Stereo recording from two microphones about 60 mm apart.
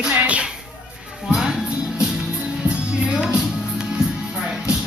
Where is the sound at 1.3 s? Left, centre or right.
Centre.